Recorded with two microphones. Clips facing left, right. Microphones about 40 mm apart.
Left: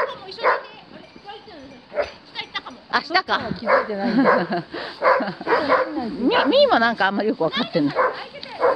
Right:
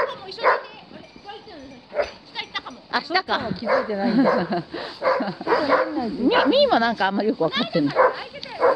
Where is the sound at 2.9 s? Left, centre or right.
Centre.